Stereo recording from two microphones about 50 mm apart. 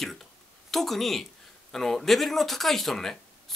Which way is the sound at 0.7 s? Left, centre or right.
Centre.